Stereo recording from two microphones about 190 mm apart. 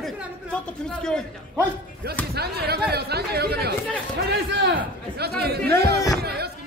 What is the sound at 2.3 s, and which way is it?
Speech, 55° right (ahead or behind).